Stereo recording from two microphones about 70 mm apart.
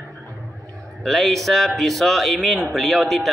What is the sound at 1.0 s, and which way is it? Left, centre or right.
A man's voice, centre.